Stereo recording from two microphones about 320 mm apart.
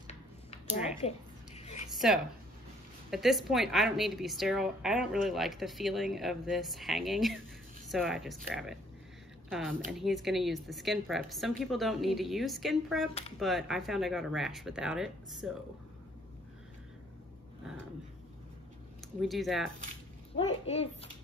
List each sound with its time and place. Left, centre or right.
0.0 s a sound: centre
2.0 s a woman's voice: centre
19.2 s a woman's voice: centre
20.3 s a child's voice: centre